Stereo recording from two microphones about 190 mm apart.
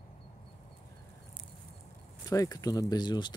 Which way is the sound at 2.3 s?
20° left (ahead or behind).